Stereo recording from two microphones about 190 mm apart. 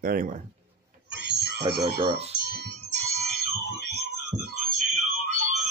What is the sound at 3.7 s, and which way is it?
Music, 55° right (ahead or behind).